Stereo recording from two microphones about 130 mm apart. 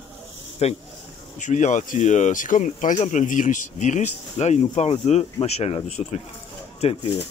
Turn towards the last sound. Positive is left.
turn(degrees=50)  # may be behind; listen again after turning